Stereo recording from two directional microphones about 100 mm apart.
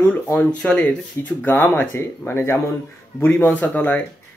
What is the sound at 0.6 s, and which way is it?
Speech, 10° left (ahead or behind).